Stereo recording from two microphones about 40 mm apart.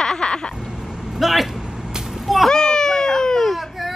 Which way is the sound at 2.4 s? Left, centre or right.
Centre.